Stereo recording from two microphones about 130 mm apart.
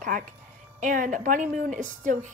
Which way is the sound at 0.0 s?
90° right.